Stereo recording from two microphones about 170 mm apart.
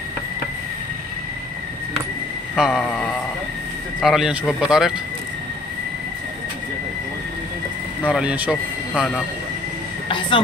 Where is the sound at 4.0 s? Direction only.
Centre (ahead or behind).